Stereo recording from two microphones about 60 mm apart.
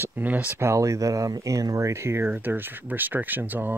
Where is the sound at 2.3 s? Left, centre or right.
Right.